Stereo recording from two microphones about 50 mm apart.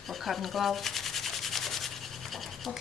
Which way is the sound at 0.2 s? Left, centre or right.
Centre.